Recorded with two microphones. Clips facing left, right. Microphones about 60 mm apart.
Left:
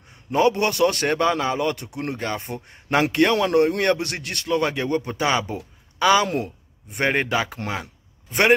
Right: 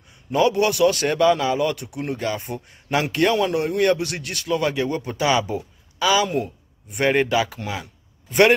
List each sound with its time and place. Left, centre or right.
0.3 s a man's voice: left
8.3 s speech: left